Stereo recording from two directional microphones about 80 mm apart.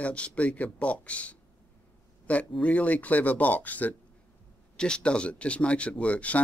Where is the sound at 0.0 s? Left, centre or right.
Centre.